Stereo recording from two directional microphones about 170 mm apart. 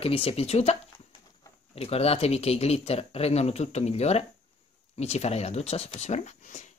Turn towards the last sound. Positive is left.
turn(degrees=45)  # may be behind; listen again after turning